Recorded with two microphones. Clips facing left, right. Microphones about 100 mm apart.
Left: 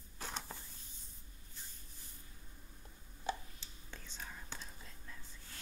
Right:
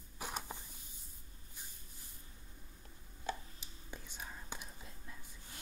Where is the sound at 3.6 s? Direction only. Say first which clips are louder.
Right 2 dB; 15° right (ahead or behind).